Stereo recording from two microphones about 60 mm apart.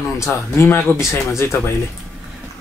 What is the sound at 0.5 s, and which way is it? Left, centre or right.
Speech, left.